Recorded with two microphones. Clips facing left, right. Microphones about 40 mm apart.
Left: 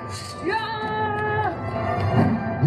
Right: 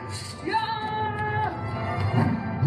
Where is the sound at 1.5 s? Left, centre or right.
Centre.